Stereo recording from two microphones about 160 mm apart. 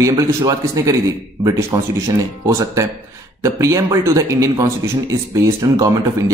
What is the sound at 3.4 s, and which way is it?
Speech, 20° right (ahead or behind).